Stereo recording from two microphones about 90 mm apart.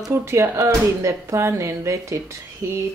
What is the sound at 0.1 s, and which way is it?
Speech, 30° right (ahead or behind).